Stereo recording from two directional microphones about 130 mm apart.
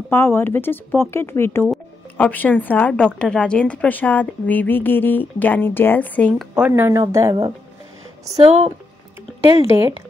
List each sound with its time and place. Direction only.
0.1 s a woman's voice: 15° left (ahead or behind)
6.3 s speech: 10° right (ahead or behind)
6.7 s speech: 25° right (ahead or behind)
8.5 s speech: 45° right (ahead or behind)
9.7 s speech: 20° right (ahead or behind)